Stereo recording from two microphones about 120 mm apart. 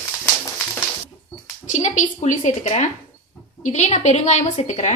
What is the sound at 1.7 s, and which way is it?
A woman's voice, 80° left.